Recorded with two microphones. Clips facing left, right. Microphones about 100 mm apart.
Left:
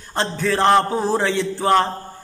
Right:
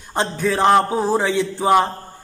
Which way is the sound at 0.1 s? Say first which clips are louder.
Right 1 dB; 15° right (ahead or behind).